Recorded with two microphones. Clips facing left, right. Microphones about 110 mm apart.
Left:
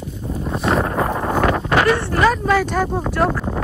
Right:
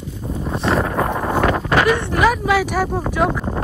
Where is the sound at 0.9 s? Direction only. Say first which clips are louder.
Even; centre (ahead or behind).